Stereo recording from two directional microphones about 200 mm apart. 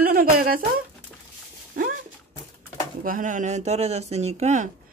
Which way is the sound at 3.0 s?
40° right (ahead or behind).